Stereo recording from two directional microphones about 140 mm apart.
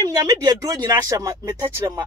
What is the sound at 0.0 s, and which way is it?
Speech, 25° right (ahead or behind).